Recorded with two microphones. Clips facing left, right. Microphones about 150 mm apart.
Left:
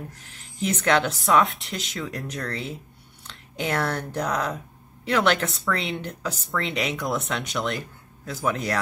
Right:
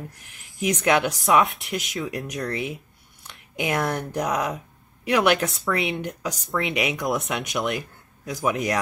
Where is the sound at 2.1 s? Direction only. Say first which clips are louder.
Right 3 dB; 20° right (ahead or behind).